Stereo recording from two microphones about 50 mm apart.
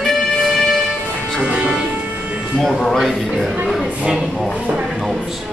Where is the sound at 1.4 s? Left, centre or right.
Right.